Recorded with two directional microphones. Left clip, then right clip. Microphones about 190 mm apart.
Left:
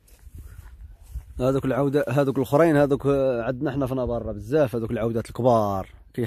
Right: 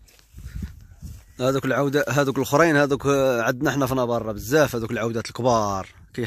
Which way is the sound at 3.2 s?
5° right (ahead or behind).